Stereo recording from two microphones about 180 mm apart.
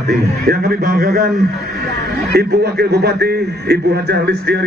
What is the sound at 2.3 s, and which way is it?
A man's voice, 65° right (ahead or behind).